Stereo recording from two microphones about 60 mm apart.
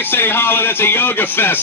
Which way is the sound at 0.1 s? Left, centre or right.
Left.